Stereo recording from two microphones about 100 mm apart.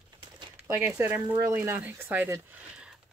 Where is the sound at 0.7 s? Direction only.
20° right (ahead or behind).